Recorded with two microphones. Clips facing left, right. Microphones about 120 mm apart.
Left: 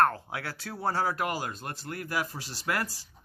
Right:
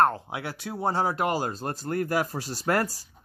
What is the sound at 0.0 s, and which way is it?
Speech, 20° right (ahead or behind).